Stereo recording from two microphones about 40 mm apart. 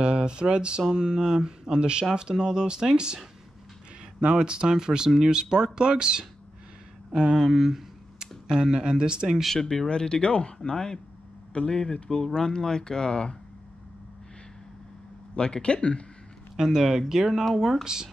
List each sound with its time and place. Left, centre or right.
0.0 s a sound: right
0.8 s speech: centre
4.2 s speech: right
7.1 s a sound: centre
8.5 s speech: centre
9.5 s speech: centre
9.8 s speech: left
15.3 s speech: left
16.7 s speech: centre